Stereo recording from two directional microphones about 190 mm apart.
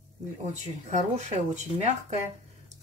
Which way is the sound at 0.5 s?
35° right (ahead or behind).